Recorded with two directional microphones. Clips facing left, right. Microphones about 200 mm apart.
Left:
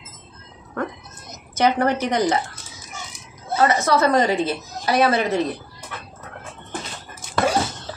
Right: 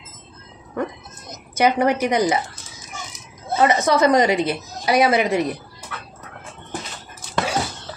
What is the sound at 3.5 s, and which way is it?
A woman's voice, 20° right (ahead or behind).